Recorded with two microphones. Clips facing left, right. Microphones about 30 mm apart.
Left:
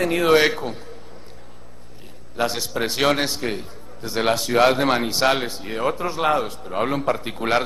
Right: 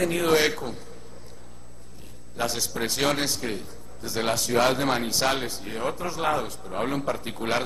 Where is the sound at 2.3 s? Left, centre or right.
Left.